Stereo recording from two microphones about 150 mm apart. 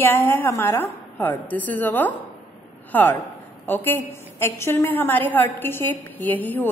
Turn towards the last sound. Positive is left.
turn(degrees=10)  # may be behind; listen again after turning